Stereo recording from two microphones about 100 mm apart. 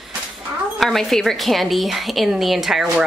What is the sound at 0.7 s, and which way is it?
A woman's voice, centre (ahead or behind).